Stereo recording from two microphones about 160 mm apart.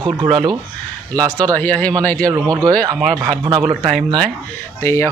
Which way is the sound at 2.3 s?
20° right (ahead or behind).